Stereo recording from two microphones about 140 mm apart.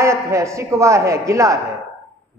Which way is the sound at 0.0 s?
20° right (ahead or behind).